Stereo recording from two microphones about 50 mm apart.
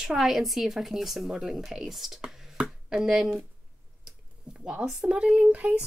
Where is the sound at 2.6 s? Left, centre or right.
Centre.